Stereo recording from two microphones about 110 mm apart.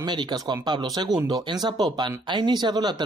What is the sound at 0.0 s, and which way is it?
Speech, 40° right (ahead or behind).